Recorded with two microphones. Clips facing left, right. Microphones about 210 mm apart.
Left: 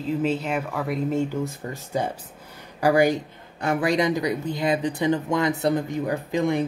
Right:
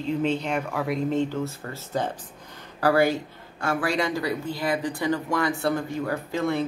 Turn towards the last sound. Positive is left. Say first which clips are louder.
# left 3 dB
turn(degrees=15)  # may be behind; listen again after turning